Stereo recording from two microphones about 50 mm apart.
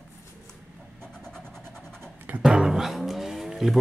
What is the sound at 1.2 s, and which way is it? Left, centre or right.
Vehicle, centre.